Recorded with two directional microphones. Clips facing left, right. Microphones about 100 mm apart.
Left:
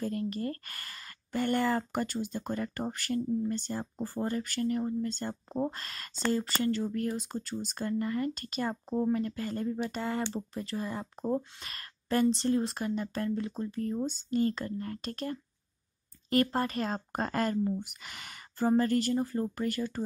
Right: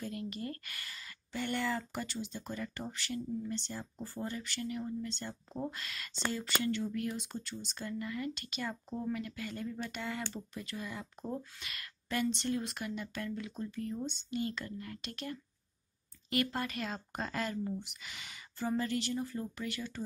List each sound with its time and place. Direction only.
0.0 s speech: 40° left (ahead or behind)